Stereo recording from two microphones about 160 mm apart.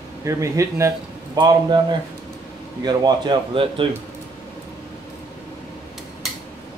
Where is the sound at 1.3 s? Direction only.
30° right (ahead or behind).